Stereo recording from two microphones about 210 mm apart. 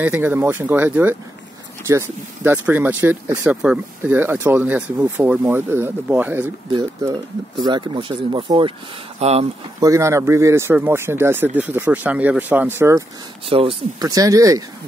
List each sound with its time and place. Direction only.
0.0 s speech: 10° right (ahead or behind)
6.7 s speech: 20° right (ahead or behind)
9.8 s speech: 15° right (ahead or behind)
13.5 s speech: 25° right (ahead or behind)
14.0 s speech: 15° right (ahead or behind)